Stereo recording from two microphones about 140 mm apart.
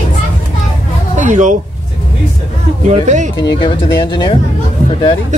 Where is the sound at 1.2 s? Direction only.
60° right (ahead or behind).